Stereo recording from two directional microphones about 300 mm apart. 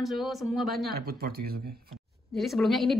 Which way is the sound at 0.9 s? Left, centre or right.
Right.